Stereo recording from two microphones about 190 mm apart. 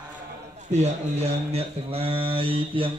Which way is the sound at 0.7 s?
35° right (ahead or behind).